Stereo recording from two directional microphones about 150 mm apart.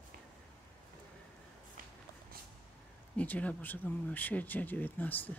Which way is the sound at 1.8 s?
70° right (ahead or behind).